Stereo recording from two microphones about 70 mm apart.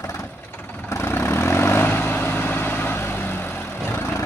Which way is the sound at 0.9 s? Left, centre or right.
Left.